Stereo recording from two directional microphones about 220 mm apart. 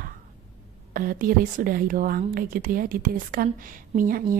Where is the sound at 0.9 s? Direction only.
40° right (ahead or behind).